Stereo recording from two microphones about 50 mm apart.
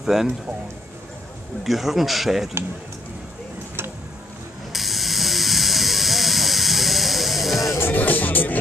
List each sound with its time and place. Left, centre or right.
0.0 s speech: centre
1.6 s speech: centre
4.7 s steam: centre
7.8 s music: left